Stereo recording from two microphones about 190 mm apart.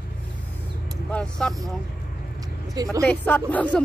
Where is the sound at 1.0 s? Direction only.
5° left (ahead or behind).